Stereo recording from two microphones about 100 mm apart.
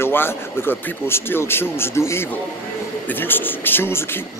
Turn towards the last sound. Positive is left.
turn(degrees=25)  # may be behind; listen again after turning